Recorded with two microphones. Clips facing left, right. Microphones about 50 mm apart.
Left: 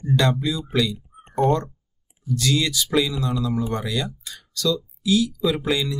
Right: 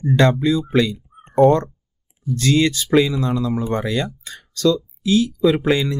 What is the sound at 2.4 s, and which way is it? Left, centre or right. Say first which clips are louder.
Speech: right 5 dB; right.